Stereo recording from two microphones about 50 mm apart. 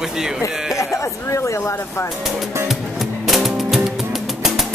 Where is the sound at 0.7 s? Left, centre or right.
Left.